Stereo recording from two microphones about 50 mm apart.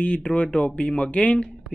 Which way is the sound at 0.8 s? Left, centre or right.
Centre.